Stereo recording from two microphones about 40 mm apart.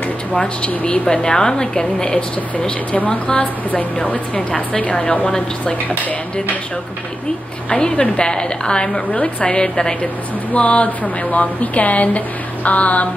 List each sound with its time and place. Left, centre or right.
0.6 s speech: left
7.7 s speech: left
10.5 s a woman's voice: left